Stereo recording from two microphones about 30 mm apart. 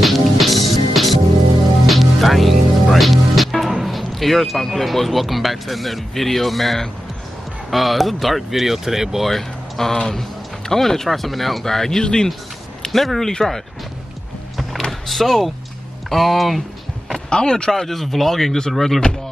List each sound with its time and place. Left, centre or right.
0.0 s music: centre
3.5 s speech: centre
9.2 s speech: centre
11.1 s speech: centre
12.0 s speech: left
12.9 s speech: centre
14.9 s speech: centre
17.3 s speech: left
17.7 s speech: centre